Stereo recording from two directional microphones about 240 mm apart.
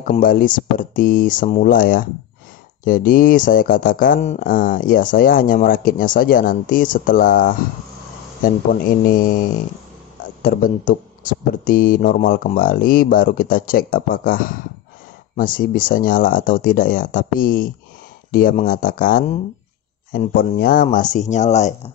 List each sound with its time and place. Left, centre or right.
0.0 s speech: left